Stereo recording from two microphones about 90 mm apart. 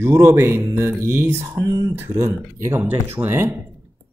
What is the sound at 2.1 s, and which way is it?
Speech, 30° right (ahead or behind).